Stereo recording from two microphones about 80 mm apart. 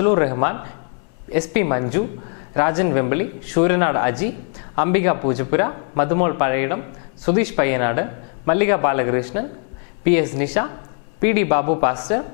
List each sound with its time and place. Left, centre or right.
0.0 s a man's voice: left